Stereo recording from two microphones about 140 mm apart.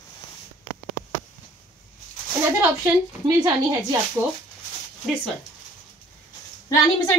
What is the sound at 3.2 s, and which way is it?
Speech, 25° right (ahead or behind).